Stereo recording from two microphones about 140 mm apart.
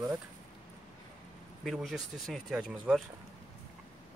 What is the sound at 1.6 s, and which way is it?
Speech, centre (ahead or behind).